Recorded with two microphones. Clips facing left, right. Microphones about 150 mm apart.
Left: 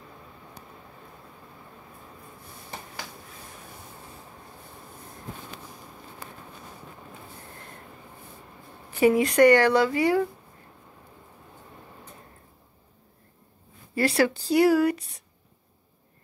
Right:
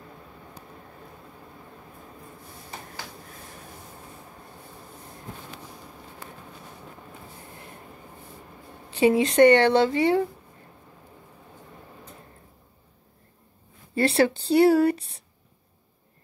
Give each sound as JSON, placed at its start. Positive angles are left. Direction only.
{"t": 8.9, "sound": "speech", "side_deg": -25}
{"t": 13.9, "sound": "speech", "side_deg": -25}